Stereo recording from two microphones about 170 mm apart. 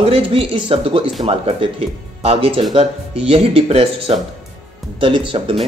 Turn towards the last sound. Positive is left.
turn(degrees=-30)  # may be behind; listen again after turning